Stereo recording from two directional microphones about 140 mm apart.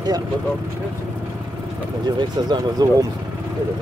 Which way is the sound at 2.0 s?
30° right (ahead or behind).